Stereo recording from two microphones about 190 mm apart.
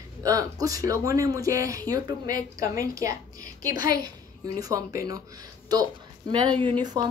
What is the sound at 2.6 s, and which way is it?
Speech, 50° left (ahead or behind).